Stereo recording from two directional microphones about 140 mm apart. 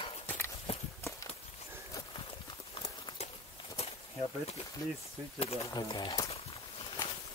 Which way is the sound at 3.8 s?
50° left (ahead or behind).